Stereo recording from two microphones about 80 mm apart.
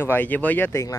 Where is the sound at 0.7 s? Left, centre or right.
Left.